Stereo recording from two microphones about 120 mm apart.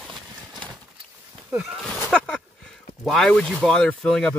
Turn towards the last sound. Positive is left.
turn(degrees=5)  # may be behind; listen again after turning